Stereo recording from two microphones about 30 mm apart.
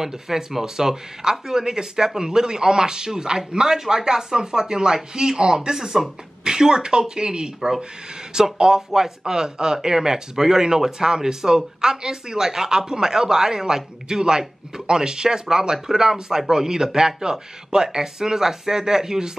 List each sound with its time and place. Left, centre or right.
0.0 s speech: centre
5.8 s speech: centre
6.4 s speech: right